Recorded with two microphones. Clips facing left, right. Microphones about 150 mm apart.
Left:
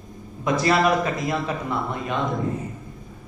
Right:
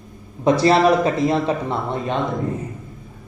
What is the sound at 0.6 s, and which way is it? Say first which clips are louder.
A man's voice: right 4 dB; 30° right (ahead or behind).